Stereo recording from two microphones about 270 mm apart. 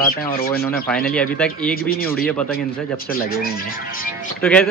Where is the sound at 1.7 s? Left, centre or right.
Left.